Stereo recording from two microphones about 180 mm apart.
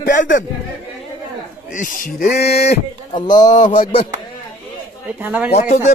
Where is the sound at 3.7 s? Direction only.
30° left (ahead or behind).